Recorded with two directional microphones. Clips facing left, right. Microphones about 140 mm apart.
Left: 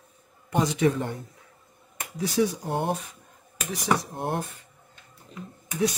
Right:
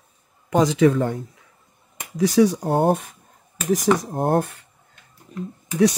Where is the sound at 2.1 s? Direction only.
90° right.